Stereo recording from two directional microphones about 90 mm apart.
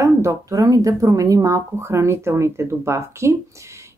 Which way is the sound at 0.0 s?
35° right (ahead or behind).